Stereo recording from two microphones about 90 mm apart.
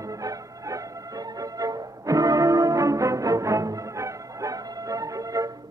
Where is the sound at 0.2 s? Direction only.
40° right (ahead or behind).